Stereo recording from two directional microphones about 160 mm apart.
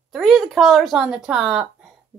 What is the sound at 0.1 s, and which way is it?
Speech, centre (ahead or behind).